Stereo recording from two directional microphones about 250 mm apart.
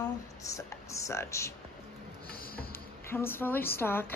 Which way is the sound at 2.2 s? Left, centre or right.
Left.